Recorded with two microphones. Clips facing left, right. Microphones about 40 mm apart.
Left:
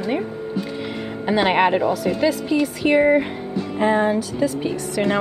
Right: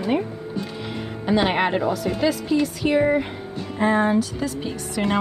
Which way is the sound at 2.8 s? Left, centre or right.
Centre.